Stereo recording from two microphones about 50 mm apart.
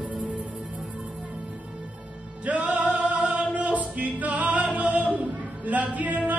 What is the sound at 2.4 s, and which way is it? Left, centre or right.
Music, right.